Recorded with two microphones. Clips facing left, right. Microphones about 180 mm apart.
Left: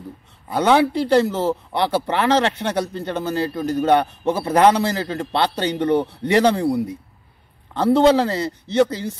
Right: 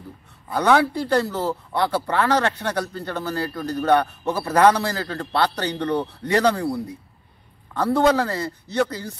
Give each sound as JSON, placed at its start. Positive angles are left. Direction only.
{"t": 0.5, "sound": "speech", "side_deg": 25}